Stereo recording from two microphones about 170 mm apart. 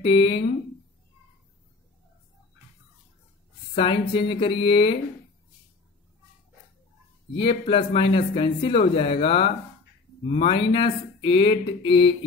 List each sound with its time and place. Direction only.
0.0 s speech: 30° left (ahead or behind)
3.7 s speech: 30° left (ahead or behind)
7.3 s speech: 35° left (ahead or behind)